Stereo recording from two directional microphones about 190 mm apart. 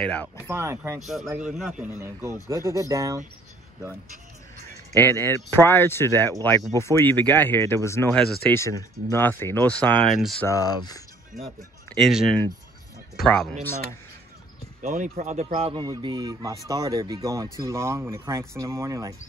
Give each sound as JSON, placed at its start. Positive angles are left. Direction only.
{"t": 0.0, "sound": "speech", "side_deg": 5}
{"t": 0.4, "sound": "speech", "side_deg": -15}
{"t": 1.0, "sound": "speech", "side_deg": 0}
{"t": 1.9, "sound": "speech", "side_deg": -15}
{"t": 4.9, "sound": "speech", "side_deg": 10}
{"t": 10.4, "sound": "speech", "side_deg": 20}
{"t": 11.3, "sound": "speech", "side_deg": 0}
{"t": 14.8, "sound": "speech", "side_deg": -40}